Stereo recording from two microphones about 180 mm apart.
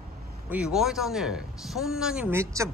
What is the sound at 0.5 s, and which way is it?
Speech, 5° right (ahead or behind).